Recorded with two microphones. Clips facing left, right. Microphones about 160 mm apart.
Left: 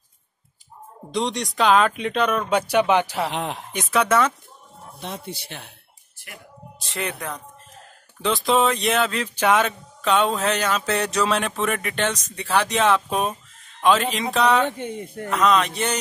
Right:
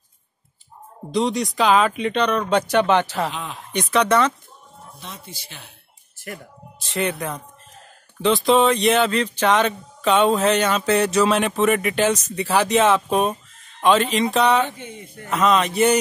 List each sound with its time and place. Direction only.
1.1 s speech: centre (ahead or behind)
3.3 s speech: 75° left (ahead or behind)
3.7 s speech: 5° left (ahead or behind)
5.0 s speech: 65° left (ahead or behind)
6.1 s a sound: 45° right (ahead or behind)
6.8 s speech: centre (ahead or behind)
14.7 s speech: 55° left (ahead or behind)
15.2 s speech: centre (ahead or behind)